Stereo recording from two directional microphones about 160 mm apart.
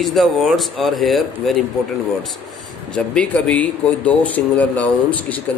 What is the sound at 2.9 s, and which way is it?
Speech, 5° left (ahead or behind).